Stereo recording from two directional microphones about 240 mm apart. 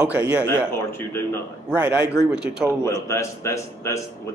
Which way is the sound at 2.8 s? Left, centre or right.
Centre.